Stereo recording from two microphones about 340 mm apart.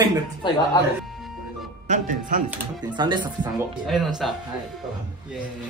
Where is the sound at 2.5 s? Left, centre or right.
Centre.